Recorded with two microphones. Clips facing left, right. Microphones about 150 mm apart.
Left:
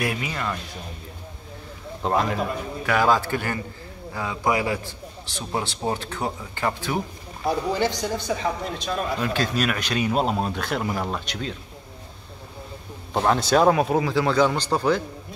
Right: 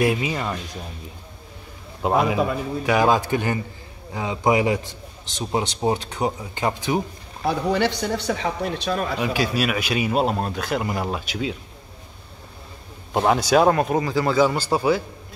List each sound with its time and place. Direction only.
0.0 s a man's voice: 20° right (ahead or behind)
2.0 s a man's voice: 5° right (ahead or behind)
7.4 s a man's voice: 65° right (ahead or behind)
9.2 s speech: 10° right (ahead or behind)
13.1 s speech: 5° right (ahead or behind)